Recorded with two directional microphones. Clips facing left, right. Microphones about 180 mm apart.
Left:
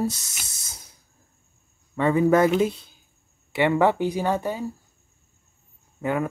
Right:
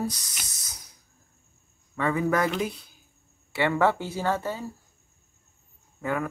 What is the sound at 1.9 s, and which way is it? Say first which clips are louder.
Speech: left 6 dB; 25° left (ahead or behind).